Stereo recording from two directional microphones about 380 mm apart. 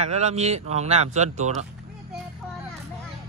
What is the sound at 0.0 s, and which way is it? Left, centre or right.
Speech, centre.